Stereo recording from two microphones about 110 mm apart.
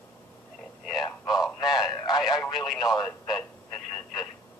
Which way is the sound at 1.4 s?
Centre (ahead or behind).